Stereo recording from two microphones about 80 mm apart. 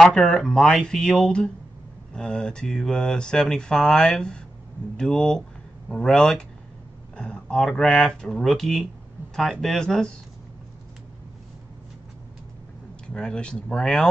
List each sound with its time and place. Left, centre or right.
0.0 s speech: centre
13.0 s speech: centre